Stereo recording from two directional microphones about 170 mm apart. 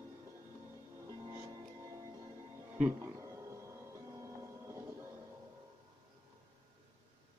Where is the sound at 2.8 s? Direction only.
10° right (ahead or behind).